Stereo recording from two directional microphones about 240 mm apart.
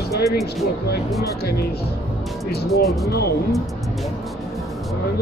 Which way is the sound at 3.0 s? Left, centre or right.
Left.